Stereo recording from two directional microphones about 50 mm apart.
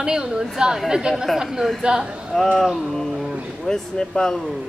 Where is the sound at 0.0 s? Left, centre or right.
Centre.